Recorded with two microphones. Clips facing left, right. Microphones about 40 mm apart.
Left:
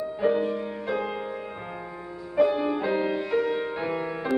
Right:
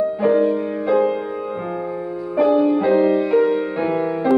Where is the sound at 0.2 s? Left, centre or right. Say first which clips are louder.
Right 7 dB; centre.